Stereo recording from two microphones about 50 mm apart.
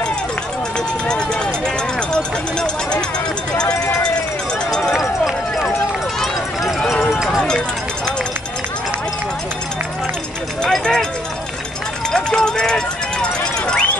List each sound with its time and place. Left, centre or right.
0.7 s run: centre
2.0 s speech: centre
4.6 s run: centre
4.9 s run: centre
10.7 s speech: centre
12.1 s run: centre